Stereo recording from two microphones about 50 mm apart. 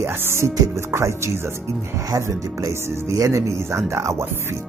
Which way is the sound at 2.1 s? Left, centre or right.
Right.